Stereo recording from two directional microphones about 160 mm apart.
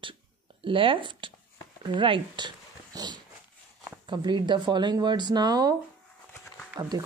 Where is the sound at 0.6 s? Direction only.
35° right (ahead or behind).